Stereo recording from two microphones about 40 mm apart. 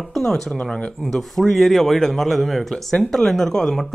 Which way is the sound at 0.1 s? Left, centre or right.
Centre.